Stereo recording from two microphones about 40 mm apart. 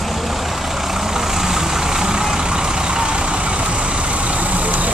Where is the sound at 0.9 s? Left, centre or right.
Centre.